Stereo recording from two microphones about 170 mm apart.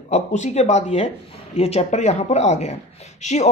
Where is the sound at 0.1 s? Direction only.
45° left (ahead or behind).